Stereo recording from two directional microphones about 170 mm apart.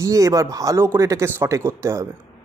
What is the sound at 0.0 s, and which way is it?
A man's voice, 20° right (ahead or behind).